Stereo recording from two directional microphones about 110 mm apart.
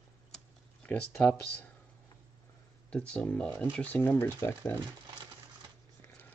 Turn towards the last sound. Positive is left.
turn(degrees=20)  # may be behind; listen again after turning